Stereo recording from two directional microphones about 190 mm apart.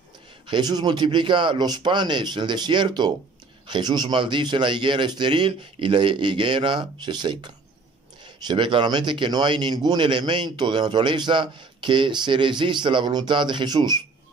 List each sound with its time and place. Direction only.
0.5 s a man's voice: 20° right (ahead or behind)